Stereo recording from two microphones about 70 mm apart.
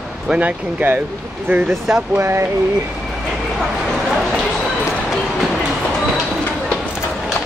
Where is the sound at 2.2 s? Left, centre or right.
Right.